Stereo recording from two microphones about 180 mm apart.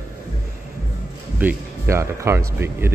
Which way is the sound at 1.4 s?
10° right (ahead or behind).